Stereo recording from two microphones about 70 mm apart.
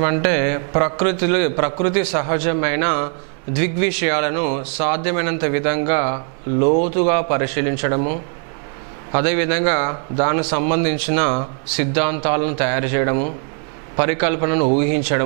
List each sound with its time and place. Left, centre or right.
0.0 s speech: centre